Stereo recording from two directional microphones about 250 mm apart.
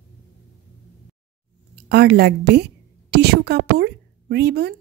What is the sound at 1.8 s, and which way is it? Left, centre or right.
A woman's voice, right.